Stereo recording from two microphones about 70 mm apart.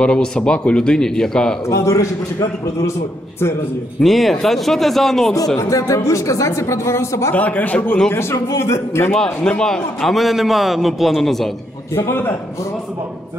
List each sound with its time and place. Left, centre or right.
0.0 s speech: centre
1.7 s speech: left
4.0 s a man's voice: centre
5.6 s speech: left
7.3 s a man's voice: left
8.1 s speech: left
9.1 s a man's voice: centre
11.9 s speech: left